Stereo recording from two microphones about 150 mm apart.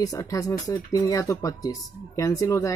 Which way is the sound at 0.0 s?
25° left (ahead or behind).